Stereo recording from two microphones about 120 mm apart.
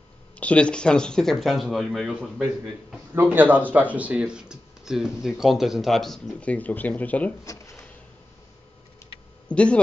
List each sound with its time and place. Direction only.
0.4 s speech: 10° left (ahead or behind)
3.2 s speech: 15° right (ahead or behind); by 7.3 s 10° left (ahead or behind)
7.4 s speech: 25° left (ahead or behind)
9.0 s a sound: 25° left (ahead or behind)
9.5 s speech: 10° left (ahead or behind)